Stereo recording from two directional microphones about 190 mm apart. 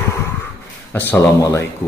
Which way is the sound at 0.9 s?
10° left (ahead or behind).